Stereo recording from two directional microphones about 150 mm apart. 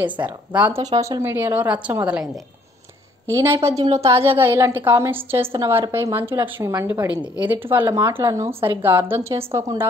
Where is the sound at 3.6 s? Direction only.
20° right (ahead or behind).